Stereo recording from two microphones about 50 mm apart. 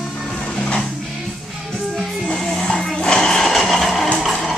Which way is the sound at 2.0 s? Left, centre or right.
Centre.